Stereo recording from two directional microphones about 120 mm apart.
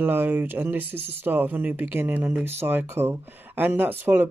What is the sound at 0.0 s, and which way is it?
Speech, 15° right (ahead or behind).